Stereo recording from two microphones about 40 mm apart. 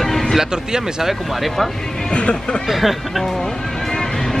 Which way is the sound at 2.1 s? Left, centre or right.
Left.